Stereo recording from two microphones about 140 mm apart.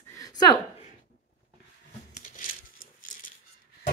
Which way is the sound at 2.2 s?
65° left (ahead or behind).